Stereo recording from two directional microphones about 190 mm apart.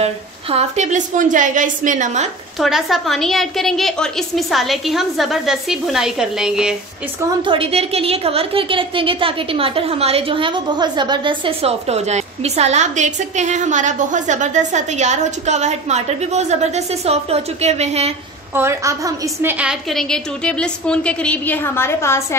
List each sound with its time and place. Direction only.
0.0 s a woman's voice: 35° right (ahead or behind)
2.6 s a woman's voice: centre (ahead or behind)
7.4 s a woman's voice: 30° right (ahead or behind)
18.5 s a woman's voice: 15° right (ahead or behind)
19.6 s a woman's voice: centre (ahead or behind)